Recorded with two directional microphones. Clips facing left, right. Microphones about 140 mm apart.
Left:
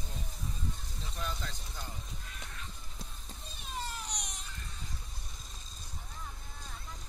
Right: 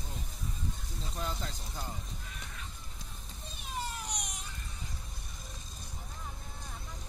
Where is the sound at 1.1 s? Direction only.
25° right (ahead or behind).